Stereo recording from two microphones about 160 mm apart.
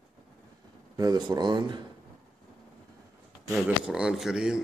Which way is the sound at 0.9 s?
25° right (ahead or behind).